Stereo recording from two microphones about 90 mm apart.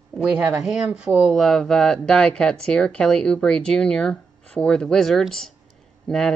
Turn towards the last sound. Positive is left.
turn(degrees=10)  # may be behind; listen again after turning